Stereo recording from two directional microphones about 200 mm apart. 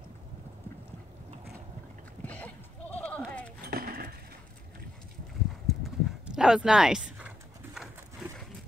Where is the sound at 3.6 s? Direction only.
50° right (ahead or behind).